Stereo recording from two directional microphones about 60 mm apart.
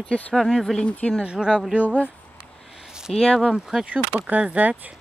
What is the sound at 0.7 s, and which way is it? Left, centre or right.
Speech, left.